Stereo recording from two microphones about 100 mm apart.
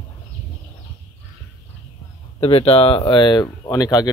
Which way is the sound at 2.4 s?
75° left (ahead or behind).